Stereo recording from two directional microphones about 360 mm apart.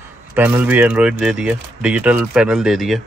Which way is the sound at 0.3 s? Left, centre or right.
Centre.